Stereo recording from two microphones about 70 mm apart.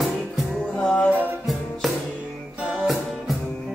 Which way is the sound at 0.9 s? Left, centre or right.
Centre.